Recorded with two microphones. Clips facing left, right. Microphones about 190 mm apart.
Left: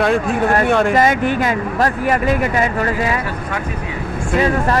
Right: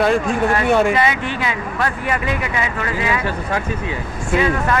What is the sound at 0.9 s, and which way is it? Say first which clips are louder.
Speech: left 5 dB; 45° left (ahead or behind).